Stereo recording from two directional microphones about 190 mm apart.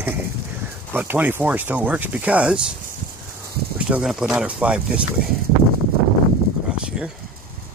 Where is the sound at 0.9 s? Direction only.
10° right (ahead or behind).